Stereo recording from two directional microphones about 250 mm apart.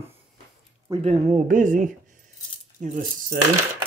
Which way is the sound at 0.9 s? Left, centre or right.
Right.